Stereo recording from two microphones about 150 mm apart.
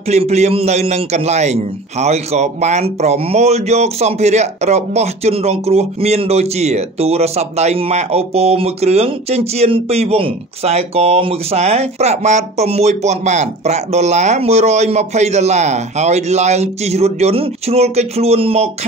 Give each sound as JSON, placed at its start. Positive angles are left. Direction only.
{"t": 0.1, "sound": "a man's voice", "side_deg": -45}